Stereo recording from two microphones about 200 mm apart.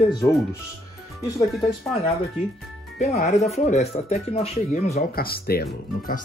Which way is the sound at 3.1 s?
35° left (ahead or behind).